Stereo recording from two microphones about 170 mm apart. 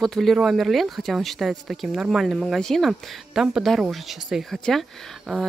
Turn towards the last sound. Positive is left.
turn(degrees=0)  # may be behind; listen again after turning